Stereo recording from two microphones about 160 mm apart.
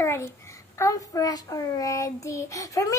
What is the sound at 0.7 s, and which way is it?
Child singing, 20° left (ahead or behind).